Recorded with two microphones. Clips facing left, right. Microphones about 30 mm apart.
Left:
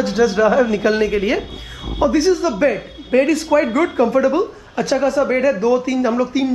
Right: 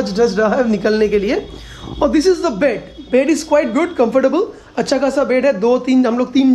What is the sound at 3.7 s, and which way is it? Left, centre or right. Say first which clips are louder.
A woman's voice: right 1 dB; right.